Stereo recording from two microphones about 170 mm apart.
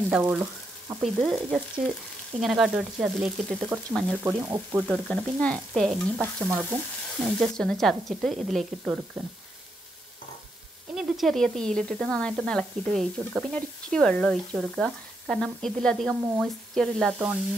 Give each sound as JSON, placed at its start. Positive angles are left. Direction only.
{"t": 0.1, "sound": "speech", "side_deg": -10}
{"t": 1.0, "sound": "speech", "side_deg": 0}
{"t": 1.8, "sound": "frying", "side_deg": 10}
{"t": 2.4, "sound": "speech", "side_deg": -5}
{"t": 4.2, "sound": "frying", "side_deg": -15}
{"t": 4.8, "sound": "speech", "side_deg": 5}
{"t": 6.4, "sound": "frying", "side_deg": -15}
{"t": 7.2, "sound": "speech", "side_deg": 0}
{"t": 11.0, "sound": "speech", "side_deg": 0}
{"t": 16.2, "sound": "frying", "side_deg": -15}
{"t": 16.7, "sound": "speech", "side_deg": 0}